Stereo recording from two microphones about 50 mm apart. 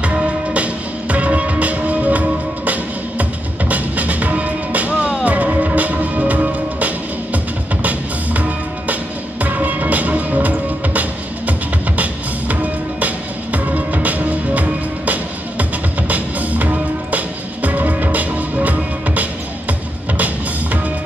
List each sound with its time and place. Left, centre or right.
0.0 s music: right
13.0 s music: right